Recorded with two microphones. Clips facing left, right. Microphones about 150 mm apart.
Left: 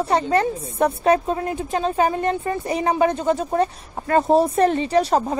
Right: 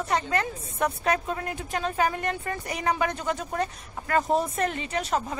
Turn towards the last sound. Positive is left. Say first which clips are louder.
# left 10 dB
turn(degrees=35)  # may be behind; listen again after turning